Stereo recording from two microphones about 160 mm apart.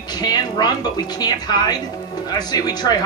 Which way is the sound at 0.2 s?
25° left (ahead or behind).